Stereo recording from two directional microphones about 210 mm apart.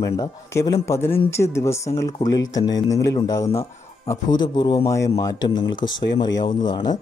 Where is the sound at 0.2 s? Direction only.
15° left (ahead or behind).